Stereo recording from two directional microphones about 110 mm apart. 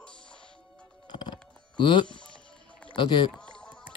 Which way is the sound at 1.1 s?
45° left (ahead or behind).